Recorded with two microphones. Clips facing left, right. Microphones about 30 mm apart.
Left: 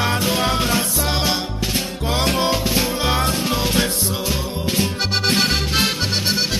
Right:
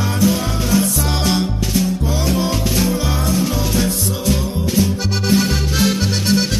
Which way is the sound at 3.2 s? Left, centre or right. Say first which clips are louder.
Right 1 dB; left.